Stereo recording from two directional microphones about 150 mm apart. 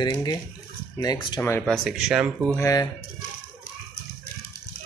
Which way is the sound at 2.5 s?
20° left (ahead or behind).